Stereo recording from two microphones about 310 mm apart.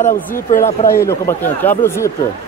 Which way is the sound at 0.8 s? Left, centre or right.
Centre.